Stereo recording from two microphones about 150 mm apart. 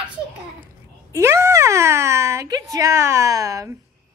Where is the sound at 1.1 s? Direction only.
20° right (ahead or behind).